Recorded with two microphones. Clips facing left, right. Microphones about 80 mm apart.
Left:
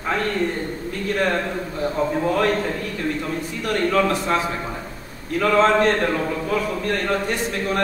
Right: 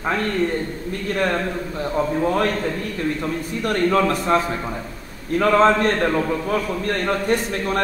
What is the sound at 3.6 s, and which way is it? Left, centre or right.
Speech, right.